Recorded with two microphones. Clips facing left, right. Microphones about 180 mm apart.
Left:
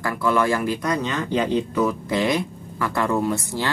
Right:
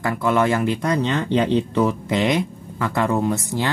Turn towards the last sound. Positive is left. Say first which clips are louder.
# right 2 dB
turn(degrees=-20)  # may be behind; listen again after turning